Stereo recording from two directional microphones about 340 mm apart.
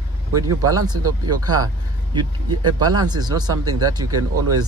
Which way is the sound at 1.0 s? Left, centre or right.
Right.